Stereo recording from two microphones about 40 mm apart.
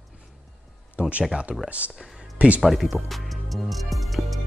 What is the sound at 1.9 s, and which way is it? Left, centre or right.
Music, centre.